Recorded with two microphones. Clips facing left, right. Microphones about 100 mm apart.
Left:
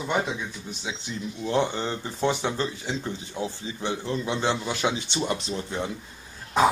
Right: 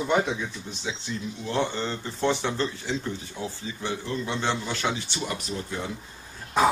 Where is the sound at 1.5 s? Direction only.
15° left (ahead or behind).